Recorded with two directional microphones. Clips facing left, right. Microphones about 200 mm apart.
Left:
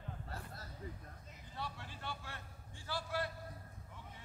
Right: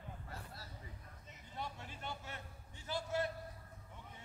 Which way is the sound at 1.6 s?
20° right (ahead or behind).